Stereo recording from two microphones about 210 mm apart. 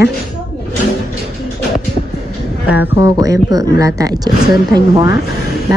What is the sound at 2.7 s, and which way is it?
Speech, 10° right (ahead or behind).